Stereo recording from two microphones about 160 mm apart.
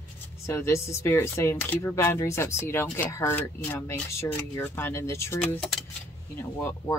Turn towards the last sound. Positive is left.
turn(degrees=15)  # may be behind; listen again after turning